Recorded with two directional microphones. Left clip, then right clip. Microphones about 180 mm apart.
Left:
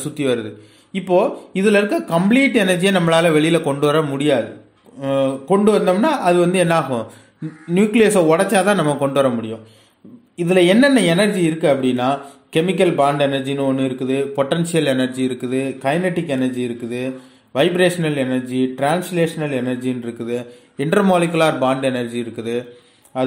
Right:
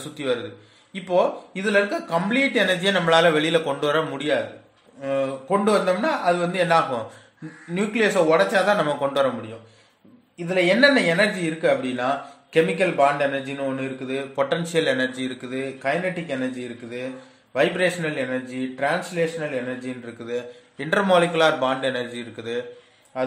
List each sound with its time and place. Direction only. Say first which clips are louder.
0.1 s a man's voice: left 5 dB; 35° left (ahead or behind)
10.3 s a man's voice: left 6 dB; 35° left (ahead or behind)